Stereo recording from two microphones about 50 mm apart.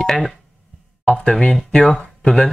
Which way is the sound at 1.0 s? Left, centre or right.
Left.